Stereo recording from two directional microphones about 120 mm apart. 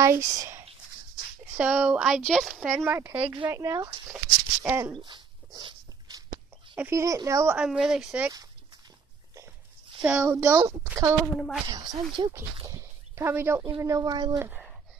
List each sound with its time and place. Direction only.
0.0 s speech: 25° right (ahead or behind)
1.7 s speech: centre (ahead or behind)
2.8 s speech: 15° right (ahead or behind)
3.4 s speech: 25° right (ahead or behind)
4.9 s dog: 40° right (ahead or behind)
6.9 s speech: 25° right (ahead or behind)
7.5 s speech: 5° right (ahead or behind)
10.0 s speech: 5° right (ahead or behind)
10.5 s speech: 25° right (ahead or behind)
11.3 s speech: 5° left (ahead or behind)
11.7 s speech: 35° right (ahead or behind)
12.6 s a sound: 25° right (ahead or behind)
13.7 s speech: 25° right (ahead or behind)
14.1 s speech: 40° right (ahead or behind)